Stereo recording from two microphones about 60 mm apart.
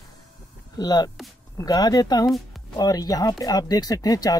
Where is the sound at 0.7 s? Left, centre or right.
Left.